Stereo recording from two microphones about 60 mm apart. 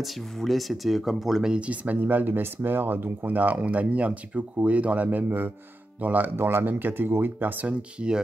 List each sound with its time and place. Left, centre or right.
0.0 s speech: centre
1.5 s speech: right